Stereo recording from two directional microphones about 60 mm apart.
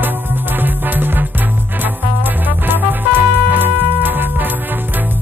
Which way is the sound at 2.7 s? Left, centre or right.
Right.